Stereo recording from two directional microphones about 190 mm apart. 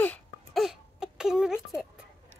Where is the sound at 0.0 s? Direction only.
5° left (ahead or behind).